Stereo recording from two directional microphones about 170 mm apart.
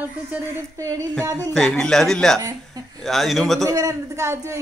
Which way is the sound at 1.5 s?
Centre (ahead or behind).